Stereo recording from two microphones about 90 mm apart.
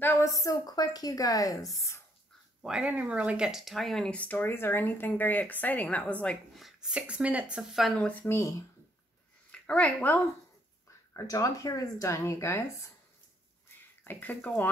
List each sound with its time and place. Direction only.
0.0 s a woman's voice: 30° left (ahead or behind)
2.6 s speech: 10° right (ahead or behind); by 6.3 s 15° left (ahead or behind)
6.5 s a sound: centre (ahead or behind)
6.9 s speech: 10° right (ahead or behind)
7.5 s speech: 5° right (ahead or behind)
7.9 s speech: 10° left (ahead or behind)
9.5 s speech: 15° left (ahead or behind)
11.1 s a woman's voice: 40° left (ahead or behind)
14.0 s speech: 20° left (ahead or behind)